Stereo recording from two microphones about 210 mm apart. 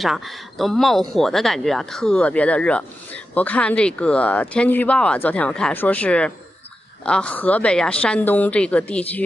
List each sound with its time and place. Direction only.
0.0 s speech: centre (ahead or behind)